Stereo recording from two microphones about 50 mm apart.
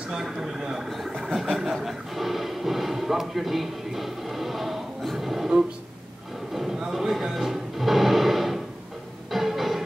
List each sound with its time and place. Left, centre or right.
0.1 s speech: centre
0.8 s music: centre
6.5 s a sound: centre
6.9 s music: centre